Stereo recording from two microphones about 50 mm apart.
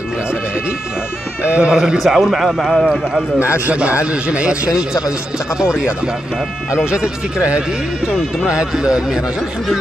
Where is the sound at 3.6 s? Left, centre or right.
Right.